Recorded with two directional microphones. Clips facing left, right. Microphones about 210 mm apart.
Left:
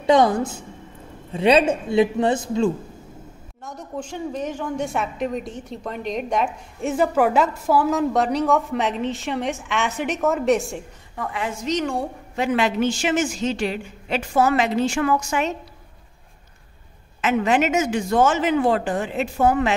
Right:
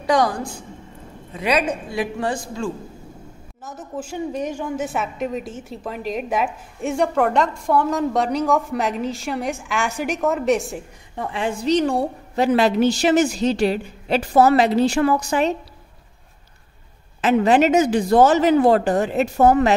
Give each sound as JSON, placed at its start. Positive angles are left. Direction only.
{"t": 0.0, "sound": "a man's voice", "side_deg": 25}
{"t": 3.6, "sound": "a woman's voice", "side_deg": -5}
{"t": 11.1, "sound": "a woman's voice", "side_deg": -30}
{"t": 17.2, "sound": "a woman's voice", "side_deg": -35}